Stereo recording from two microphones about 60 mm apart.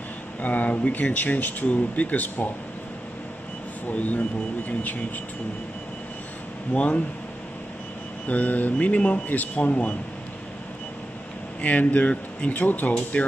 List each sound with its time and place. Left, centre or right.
0.4 s speech: left
3.8 s speech: left
6.7 s speech: left
8.3 s speech: left
11.6 s speech: left